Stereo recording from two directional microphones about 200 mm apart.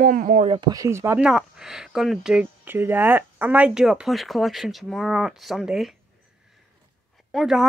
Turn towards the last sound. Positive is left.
turn(degrees=0)  # may be behind; listen again after turning